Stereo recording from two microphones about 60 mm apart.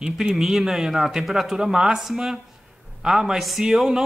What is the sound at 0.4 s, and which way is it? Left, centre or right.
Speech, centre.